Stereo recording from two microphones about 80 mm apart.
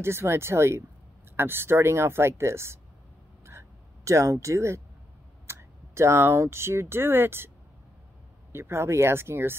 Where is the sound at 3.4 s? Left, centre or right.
Right.